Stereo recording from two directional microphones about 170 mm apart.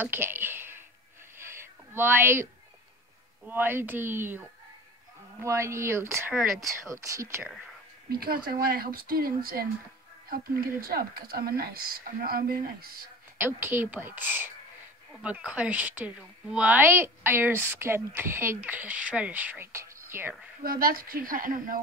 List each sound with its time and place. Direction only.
0.0 s a sound: 10° right (ahead or behind)
3.4 s a woman's voice: 10° right (ahead or behind)
6.3 s speech: centre (ahead or behind)
6.9 s a woman's voice: 20° right (ahead or behind)
8.1 s speech: 60° right (ahead or behind)
13.4 s a woman's voice: 10° right (ahead or behind)
20.6 s speech: 55° right (ahead or behind)